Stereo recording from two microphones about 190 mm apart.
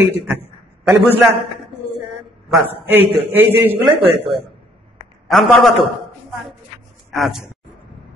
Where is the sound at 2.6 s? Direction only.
10° right (ahead or behind).